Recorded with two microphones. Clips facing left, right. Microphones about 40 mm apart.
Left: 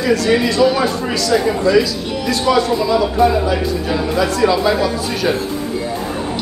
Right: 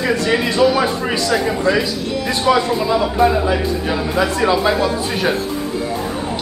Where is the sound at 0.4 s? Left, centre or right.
Centre.